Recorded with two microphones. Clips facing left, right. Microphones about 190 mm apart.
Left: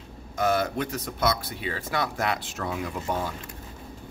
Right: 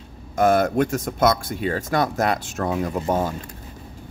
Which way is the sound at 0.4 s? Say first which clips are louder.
Right 7 dB; 50° right (ahead or behind).